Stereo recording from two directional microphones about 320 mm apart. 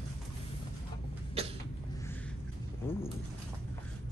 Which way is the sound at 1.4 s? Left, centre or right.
Centre.